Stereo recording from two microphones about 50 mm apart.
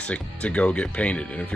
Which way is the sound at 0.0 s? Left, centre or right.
Left.